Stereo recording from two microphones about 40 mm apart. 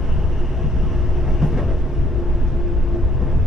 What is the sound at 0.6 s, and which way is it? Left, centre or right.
Train, centre.